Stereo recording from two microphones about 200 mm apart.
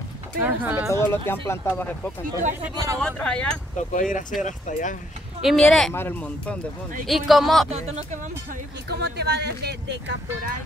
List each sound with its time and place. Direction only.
0.4 s speech: 10° right (ahead or behind)
0.9 s speech: 10° left (ahead or behind)
2.7 s speech: 20° right (ahead or behind)
3.0 s speech: 5° left (ahead or behind)
3.9 s speech: 40° left (ahead or behind)
5.4 s speech: centre (ahead or behind)
7.7 s speech: 30° right (ahead or behind)
8.8 s speech: 55° right (ahead or behind)